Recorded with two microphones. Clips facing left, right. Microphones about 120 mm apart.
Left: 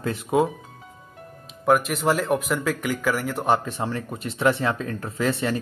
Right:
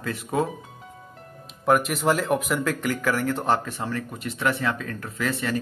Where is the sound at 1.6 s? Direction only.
Centre (ahead or behind).